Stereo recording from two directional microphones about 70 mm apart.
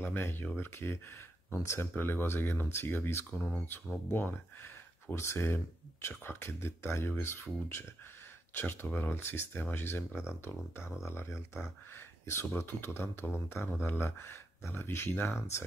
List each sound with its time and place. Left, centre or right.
0.0 s speech: left
5.1 s speech: left